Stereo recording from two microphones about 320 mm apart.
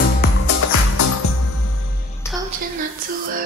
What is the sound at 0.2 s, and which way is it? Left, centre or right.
Music, left.